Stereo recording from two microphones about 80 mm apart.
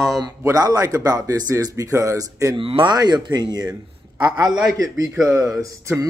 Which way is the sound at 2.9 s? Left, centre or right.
Right.